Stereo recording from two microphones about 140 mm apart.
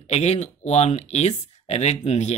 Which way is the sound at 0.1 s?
50° left (ahead or behind).